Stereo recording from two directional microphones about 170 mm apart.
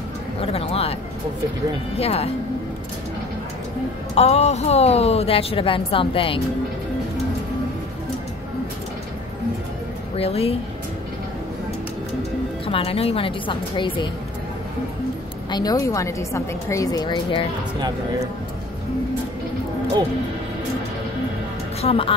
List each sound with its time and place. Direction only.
0.4 s a sound: 35° left (ahead or behind)
2.0 s a woman's voice: 35° left (ahead or behind)
4.1 s a woman's voice: 40° left (ahead or behind)
10.1 s a woman's voice: 35° left (ahead or behind)
12.6 s a woman's voice: 35° left (ahead or behind)
15.5 s a woman's voice: 20° left (ahead or behind)
21.8 s a woman's voice: 35° left (ahead or behind)